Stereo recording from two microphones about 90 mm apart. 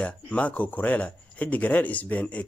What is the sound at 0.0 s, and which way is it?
Speech, 15° left (ahead or behind).